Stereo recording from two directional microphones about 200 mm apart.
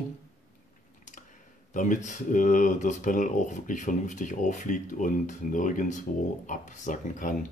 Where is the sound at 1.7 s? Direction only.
40° left (ahead or behind).